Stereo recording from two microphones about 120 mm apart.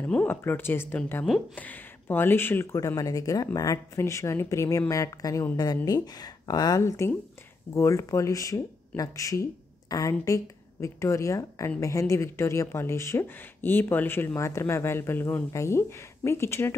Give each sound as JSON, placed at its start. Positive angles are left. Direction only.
{"t": 0.0, "sound": "speech", "side_deg": 15}